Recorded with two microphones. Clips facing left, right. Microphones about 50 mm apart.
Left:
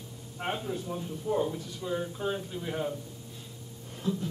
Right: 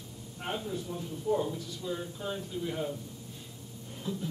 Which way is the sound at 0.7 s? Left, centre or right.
Left.